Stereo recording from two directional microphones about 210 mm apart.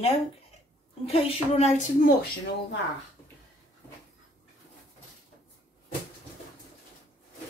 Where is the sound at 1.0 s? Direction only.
30° left (ahead or behind).